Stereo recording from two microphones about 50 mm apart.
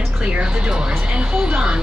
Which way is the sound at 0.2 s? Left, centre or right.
Right.